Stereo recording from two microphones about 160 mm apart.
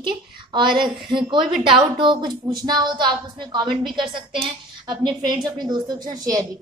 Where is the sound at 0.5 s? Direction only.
30° right (ahead or behind).